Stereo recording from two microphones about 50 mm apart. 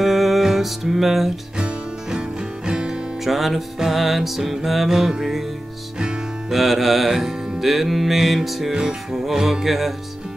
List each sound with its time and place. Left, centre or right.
0.0 s music: centre
2.0 s music: centre
3.3 s music: centre
6.5 s music: centre